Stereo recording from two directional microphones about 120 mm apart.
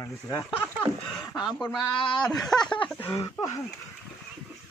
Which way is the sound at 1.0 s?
Centre (ahead or behind).